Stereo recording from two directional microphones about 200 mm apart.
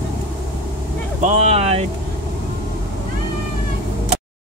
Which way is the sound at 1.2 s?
35° right (ahead or behind).